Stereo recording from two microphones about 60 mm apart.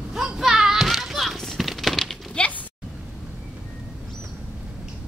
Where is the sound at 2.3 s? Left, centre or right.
Left.